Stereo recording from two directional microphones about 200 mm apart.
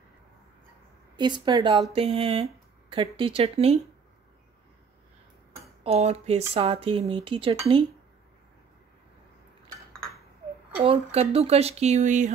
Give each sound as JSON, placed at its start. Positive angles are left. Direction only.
{"t": 1.1, "sound": "speech", "side_deg": -20}
{"t": 5.9, "sound": "speech", "side_deg": -30}
{"t": 10.8, "sound": "speech", "side_deg": -30}